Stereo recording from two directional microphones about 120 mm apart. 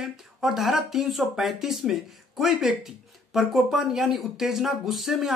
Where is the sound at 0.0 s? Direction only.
Centre (ahead or behind).